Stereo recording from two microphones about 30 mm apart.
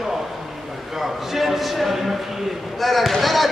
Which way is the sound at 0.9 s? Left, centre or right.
Centre.